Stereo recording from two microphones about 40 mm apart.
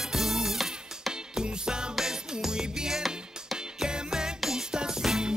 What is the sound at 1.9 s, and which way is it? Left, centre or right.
Music, centre.